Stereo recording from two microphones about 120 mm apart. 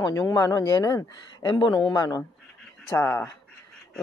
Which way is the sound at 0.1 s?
30° left (ahead or behind).